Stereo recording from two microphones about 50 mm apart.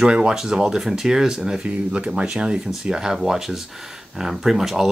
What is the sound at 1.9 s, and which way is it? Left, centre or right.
Speech, right.